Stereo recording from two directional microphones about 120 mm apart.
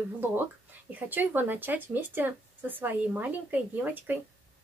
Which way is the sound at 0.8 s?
15° right (ahead or behind).